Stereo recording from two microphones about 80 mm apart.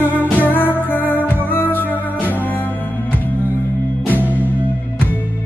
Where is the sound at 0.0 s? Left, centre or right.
Left.